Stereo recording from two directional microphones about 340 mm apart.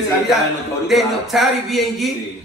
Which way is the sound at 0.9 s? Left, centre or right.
Centre.